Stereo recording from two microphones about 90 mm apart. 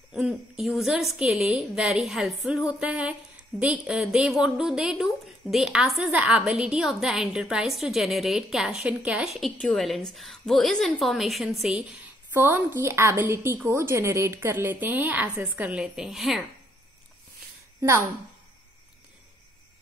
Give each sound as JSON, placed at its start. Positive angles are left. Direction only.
{"t": 0.1, "sound": "a woman's voice", "side_deg": -5}
{"t": 12.3, "sound": "a woman's voice", "side_deg": -25}
{"t": 17.7, "sound": "a woman's voice", "side_deg": -30}